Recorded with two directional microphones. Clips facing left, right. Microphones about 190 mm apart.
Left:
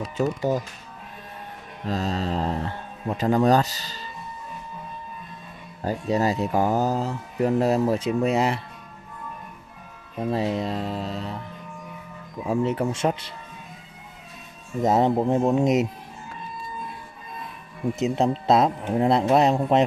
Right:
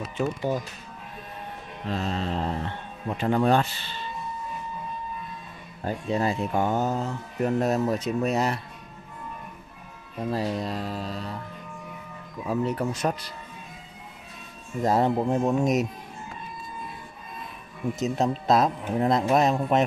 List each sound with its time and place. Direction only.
0.2 s speech: 40° left (ahead or behind)
1.9 s speech: 40° left (ahead or behind)
5.9 s speech: 40° left (ahead or behind)
10.3 s speech: 25° left (ahead or behind)
12.4 s speech: 25° left (ahead or behind)
14.8 s speech: 20° left (ahead or behind)
17.9 s speech: 25° left (ahead or behind)